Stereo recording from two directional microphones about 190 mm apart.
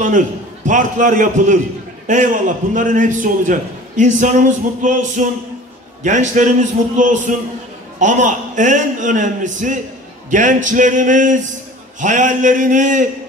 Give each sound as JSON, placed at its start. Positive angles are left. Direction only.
{"t": 0.7, "sound": "a man's voice", "side_deg": -40}